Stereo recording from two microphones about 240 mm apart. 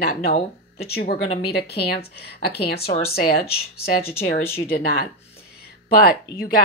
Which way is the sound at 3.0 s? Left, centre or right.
Left.